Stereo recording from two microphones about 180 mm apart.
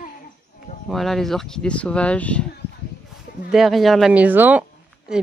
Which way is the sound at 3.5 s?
Centre (ahead or behind).